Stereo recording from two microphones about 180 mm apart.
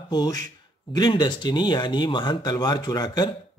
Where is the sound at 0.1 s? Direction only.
20° left (ahead or behind).